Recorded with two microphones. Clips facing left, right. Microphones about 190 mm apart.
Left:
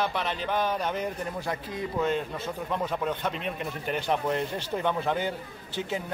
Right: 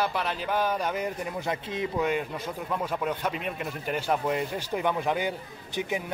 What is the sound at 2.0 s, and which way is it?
A man's voice, 10° right (ahead or behind).